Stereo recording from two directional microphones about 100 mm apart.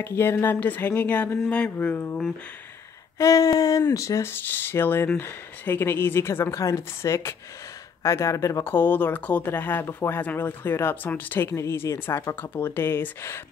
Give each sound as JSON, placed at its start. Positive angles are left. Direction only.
{"t": 0.0, "sound": "speech", "side_deg": 25}
{"t": 1.5, "sound": "a sound", "side_deg": 15}
{"t": 3.2, "sound": "speech", "side_deg": 35}